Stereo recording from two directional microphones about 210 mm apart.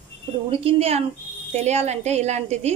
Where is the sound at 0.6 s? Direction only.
30° right (ahead or behind).